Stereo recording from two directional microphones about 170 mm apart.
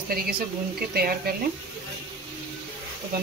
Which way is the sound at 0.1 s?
65° right (ahead or behind).